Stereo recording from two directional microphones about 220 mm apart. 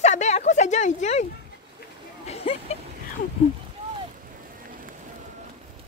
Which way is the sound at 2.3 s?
30° left (ahead or behind).